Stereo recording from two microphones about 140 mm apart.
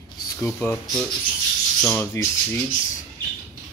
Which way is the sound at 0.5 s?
10° left (ahead or behind).